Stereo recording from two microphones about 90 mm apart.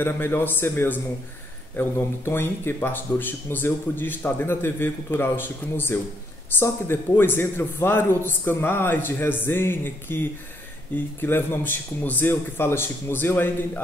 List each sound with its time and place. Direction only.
0.0 s speech: 25° left (ahead or behind)